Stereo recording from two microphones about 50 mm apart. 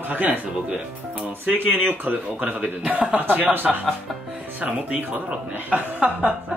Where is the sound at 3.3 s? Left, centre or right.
Right.